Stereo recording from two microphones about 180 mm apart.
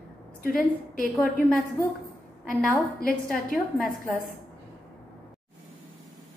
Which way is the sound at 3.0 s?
55° left (ahead or behind).